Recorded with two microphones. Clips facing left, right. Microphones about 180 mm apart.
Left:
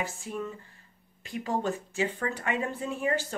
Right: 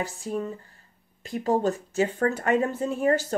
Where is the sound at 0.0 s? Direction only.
35° right (ahead or behind).